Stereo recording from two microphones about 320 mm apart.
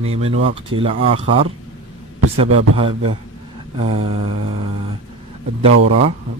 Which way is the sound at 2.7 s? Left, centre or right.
Centre.